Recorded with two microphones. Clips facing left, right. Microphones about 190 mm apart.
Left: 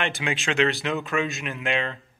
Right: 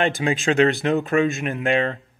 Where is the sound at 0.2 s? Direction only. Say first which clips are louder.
Right 4 dB; 40° right (ahead or behind).